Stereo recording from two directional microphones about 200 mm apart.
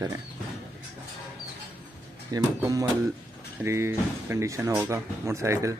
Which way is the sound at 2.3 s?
15° right (ahead or behind).